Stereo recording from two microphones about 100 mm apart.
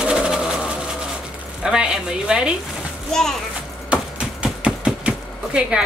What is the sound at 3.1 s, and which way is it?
Speech, 5° left (ahead or behind).